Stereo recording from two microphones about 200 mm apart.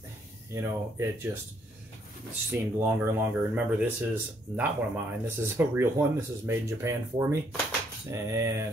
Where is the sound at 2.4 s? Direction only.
10° right (ahead or behind).